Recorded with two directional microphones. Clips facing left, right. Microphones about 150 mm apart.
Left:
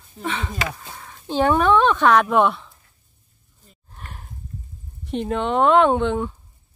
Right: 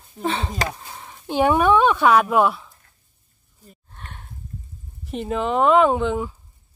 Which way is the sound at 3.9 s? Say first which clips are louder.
Left 1 dB; 5° left (ahead or behind).